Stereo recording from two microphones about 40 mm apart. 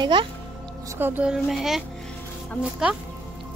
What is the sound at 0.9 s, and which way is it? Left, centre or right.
Speech, right.